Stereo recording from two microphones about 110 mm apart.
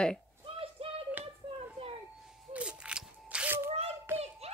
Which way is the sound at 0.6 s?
60° right (ahead or behind).